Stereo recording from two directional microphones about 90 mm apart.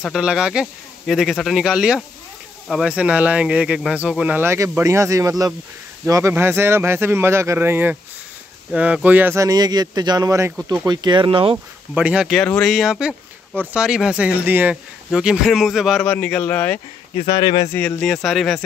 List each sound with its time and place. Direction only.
0.2 s speech: 10° right (ahead or behind)
4.5 s speech: 35° right (ahead or behind)
6.3 s speech: 25° right (ahead or behind)
9.3 s speech: 40° right (ahead or behind)
10.9 s speech: 55° right (ahead or behind); by 11.5 s 75° right (ahead or behind)
11.9 s speech: 15° right (ahead or behind)
12.4 s speech: 5° left (ahead or behind); by 14.8 s 20° right (ahead or behind)
15.1 s a man's voice: 5° right (ahead or behind)
16.0 s speech: 15° left (ahead or behind)
17.3 s speech: 60° left (ahead or behind)
17.7 s speech: 15° left (ahead or behind)
18.0 s a man's voice: 5° left (ahead or behind)